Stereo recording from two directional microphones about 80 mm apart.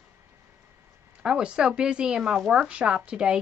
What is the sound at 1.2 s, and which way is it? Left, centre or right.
A woman's voice, centre.